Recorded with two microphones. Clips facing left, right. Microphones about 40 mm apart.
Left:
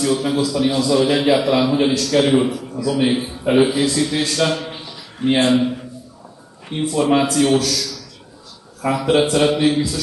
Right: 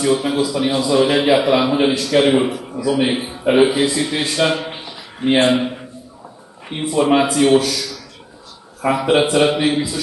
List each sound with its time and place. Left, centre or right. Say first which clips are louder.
0.0 s a man's voice: right 1 dB; centre